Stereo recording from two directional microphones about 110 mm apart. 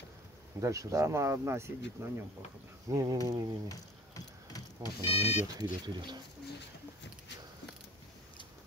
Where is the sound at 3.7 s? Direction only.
35° left (ahead or behind).